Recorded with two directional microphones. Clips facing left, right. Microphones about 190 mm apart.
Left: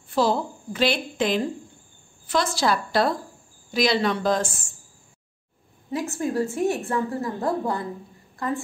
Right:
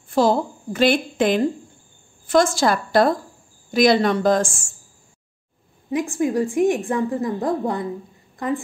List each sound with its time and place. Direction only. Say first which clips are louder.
0.1 s a woman's voice: right 4 dB; 45° right (ahead or behind)
5.9 s a woman's voice: right 5 dB; 15° right (ahead or behind)